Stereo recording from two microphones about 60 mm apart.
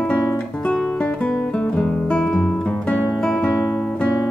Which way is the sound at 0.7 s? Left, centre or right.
Left.